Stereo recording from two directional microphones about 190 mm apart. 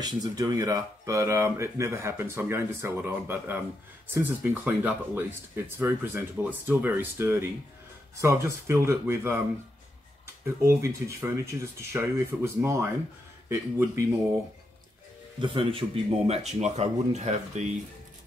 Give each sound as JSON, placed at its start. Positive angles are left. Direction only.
{"t": 0.0, "sound": "speech", "side_deg": -20}
{"t": 10.4, "sound": "speech", "side_deg": -15}
{"t": 15.4, "sound": "speech", "side_deg": -30}